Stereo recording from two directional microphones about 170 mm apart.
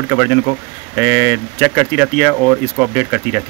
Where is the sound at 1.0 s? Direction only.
Centre (ahead or behind).